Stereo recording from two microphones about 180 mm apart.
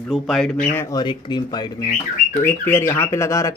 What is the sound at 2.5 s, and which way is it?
Speech, 15° left (ahead or behind).